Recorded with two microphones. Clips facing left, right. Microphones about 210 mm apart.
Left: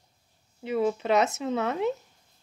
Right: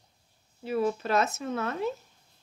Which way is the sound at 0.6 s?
20° left (ahead or behind).